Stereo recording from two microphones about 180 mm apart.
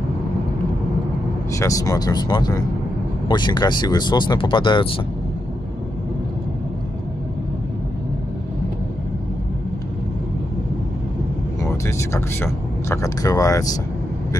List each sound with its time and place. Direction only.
1.5 s speech: 15° left (ahead or behind)
11.6 s speech: 15° left (ahead or behind)